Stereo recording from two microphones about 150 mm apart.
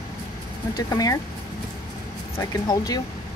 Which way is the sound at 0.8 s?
25° left (ahead or behind).